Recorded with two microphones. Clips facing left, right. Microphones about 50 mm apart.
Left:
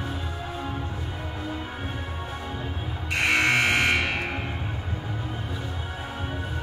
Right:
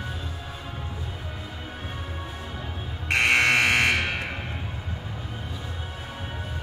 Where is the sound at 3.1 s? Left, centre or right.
Right.